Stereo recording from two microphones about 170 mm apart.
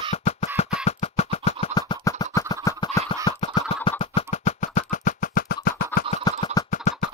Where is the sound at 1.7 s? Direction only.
20° left (ahead or behind).